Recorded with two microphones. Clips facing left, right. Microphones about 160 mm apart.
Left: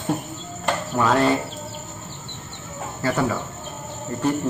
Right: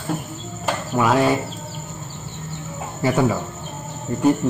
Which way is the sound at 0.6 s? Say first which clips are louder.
Right 1 dB; 5° right (ahead or behind).